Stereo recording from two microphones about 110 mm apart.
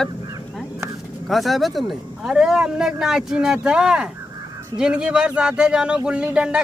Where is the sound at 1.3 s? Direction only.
Centre (ahead or behind).